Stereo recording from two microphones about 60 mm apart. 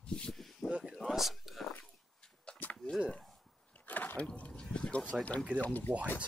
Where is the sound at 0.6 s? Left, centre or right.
Centre.